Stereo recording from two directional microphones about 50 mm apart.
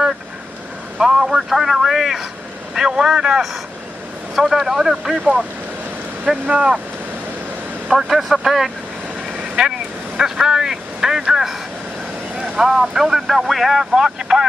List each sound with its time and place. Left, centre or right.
0.9 s a man's voice: centre
6.2 s speech: right
7.9 s a man's voice: centre
9.6 s vehicle: centre
12.4 s speech: centre